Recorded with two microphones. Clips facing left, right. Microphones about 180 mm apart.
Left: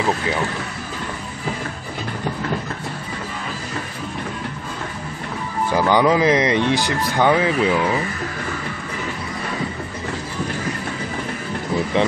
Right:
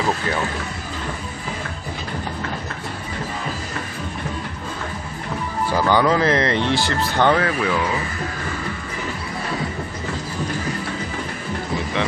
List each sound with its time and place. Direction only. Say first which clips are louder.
5.7 s speech: left 2 dB; 15° left (ahead or behind)